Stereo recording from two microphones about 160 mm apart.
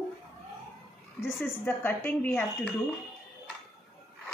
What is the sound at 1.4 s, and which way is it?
Speech, 15° left (ahead or behind).